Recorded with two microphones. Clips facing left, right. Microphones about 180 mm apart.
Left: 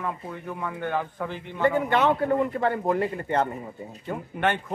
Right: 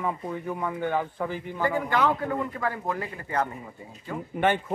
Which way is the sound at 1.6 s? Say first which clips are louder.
Left 3 dB; 25° left (ahead or behind).